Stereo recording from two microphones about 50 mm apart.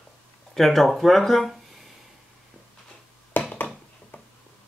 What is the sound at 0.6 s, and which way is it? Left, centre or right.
Speech, centre.